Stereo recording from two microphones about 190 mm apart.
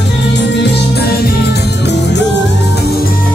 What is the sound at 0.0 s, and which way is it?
Music, 65° left (ahead or behind).